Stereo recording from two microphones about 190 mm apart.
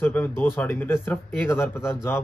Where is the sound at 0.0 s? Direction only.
10° left (ahead or behind).